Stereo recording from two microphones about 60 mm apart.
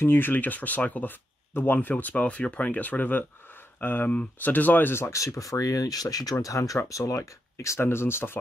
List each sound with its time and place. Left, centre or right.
0.0 s speech: left
4.9 s speech: left
6.4 s speech: left